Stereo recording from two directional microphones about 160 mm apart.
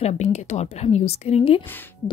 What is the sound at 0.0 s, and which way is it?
A woman's voice, 45° left (ahead or behind).